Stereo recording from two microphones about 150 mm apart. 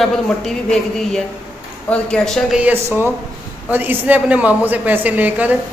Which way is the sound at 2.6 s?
15° right (ahead or behind).